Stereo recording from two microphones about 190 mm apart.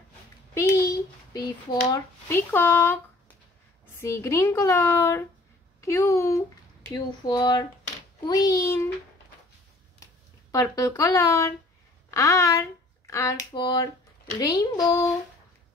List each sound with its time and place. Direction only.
0.6 s child singing: 20° left (ahead or behind)
1.9 s a child's voice: 10° left (ahead or behind)
10.5 s a child's voice: 15° left (ahead or behind)